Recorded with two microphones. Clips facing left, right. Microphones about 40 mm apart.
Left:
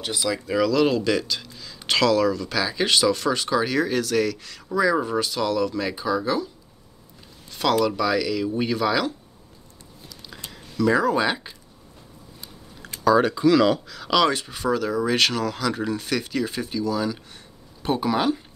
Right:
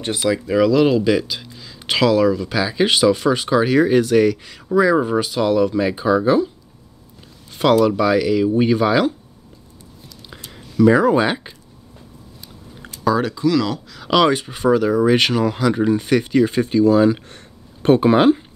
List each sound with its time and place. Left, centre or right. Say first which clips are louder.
0.3 s speech: right 6 dB; centre
7.5 s speech: right 6 dB; right
10.5 s speech: right 7 dB; centre
13.0 s speech: even; centre
13.3 s speech: left 1 dB; centre
13.8 s speech: right 2 dB; centre
14.1 s speech: right 5 dB; centre